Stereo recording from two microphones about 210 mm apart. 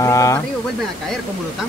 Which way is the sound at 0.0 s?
15° left (ahead or behind).